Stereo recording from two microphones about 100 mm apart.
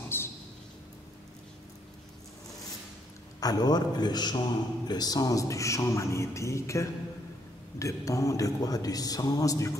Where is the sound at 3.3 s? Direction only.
40° left (ahead or behind).